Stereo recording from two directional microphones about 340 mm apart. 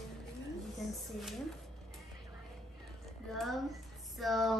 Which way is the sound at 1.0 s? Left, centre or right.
Centre.